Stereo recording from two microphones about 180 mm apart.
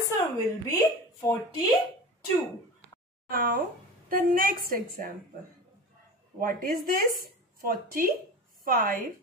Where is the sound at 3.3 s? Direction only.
50° right (ahead or behind).